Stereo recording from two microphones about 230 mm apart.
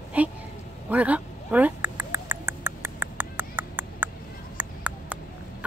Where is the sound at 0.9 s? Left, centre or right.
Centre.